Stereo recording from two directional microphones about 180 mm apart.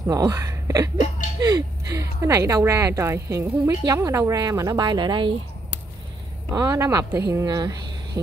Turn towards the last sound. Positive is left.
turn(degrees=-20)  # may be behind; listen again after turning